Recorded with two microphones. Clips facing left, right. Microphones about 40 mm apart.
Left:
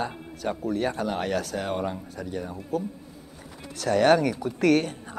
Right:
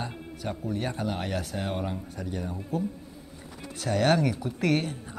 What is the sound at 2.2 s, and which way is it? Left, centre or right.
Speech, left.